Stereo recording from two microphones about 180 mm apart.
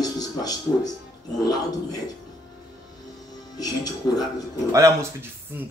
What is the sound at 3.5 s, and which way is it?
Speech, 20° left (ahead or behind).